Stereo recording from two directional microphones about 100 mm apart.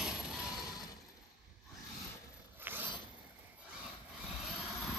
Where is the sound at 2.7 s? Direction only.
20° right (ahead or behind).